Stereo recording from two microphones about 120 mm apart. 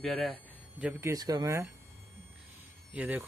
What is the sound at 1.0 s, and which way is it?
Speech, 30° right (ahead or behind).